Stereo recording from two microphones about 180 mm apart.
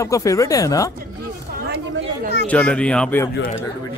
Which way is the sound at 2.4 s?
5° left (ahead or behind).